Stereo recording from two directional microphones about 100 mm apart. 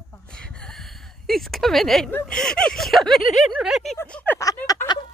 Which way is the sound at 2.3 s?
5° left (ahead or behind).